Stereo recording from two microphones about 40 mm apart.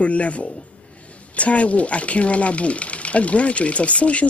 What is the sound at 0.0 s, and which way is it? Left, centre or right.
Speech, left.